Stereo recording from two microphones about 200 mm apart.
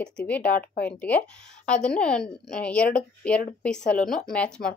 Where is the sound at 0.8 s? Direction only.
5° left (ahead or behind).